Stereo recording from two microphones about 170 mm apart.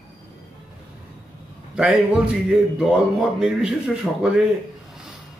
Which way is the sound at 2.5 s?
5° right (ahead or behind).